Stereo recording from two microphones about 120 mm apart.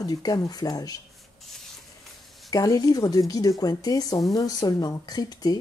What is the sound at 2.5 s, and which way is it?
Speech, 30° left (ahead or behind).